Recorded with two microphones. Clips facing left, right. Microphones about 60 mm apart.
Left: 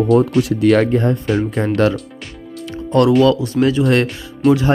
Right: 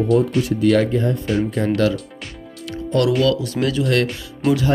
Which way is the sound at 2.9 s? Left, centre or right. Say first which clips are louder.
Left 5 dB; left.